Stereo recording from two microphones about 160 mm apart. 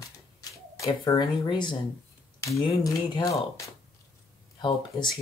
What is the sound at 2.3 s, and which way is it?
Speech, 20° left (ahead or behind).